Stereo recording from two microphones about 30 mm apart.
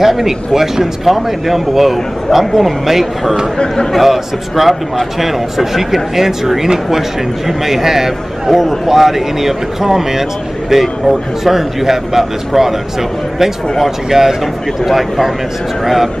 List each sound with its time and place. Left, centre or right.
0.0 s a man's voice: centre